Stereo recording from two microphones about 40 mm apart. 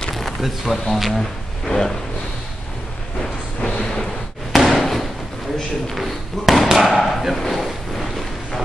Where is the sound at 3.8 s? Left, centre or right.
Centre.